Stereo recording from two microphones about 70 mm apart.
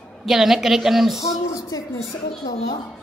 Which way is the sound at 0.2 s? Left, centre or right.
Centre.